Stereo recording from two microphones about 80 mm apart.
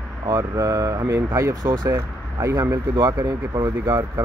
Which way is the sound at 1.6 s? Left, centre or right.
Right.